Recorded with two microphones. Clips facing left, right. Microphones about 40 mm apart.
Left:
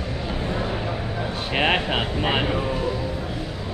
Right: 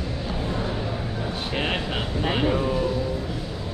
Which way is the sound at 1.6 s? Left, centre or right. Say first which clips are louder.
Left 7 dB; left.